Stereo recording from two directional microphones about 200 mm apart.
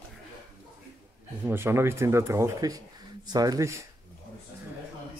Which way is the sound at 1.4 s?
10° right (ahead or behind).